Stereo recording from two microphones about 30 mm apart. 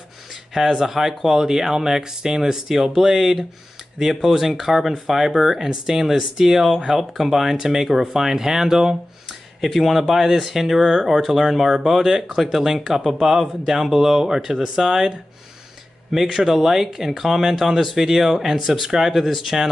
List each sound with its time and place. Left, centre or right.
0.6 s speech: centre
4.0 s speech: centre
9.6 s speech: centre